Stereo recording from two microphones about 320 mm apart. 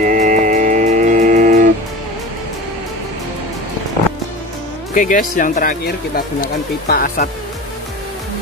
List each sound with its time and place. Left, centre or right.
0.0 s music: right
4.9 s speech: left